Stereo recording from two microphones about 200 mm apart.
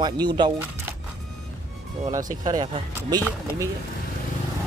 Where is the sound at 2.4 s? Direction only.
20° right (ahead or behind).